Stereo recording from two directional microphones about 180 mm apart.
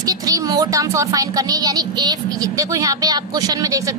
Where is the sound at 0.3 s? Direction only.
20° right (ahead or behind).